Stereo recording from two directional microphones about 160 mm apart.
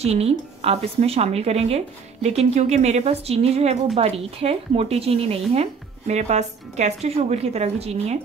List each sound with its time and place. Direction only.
0.0 s a woman's voice: 40° right (ahead or behind)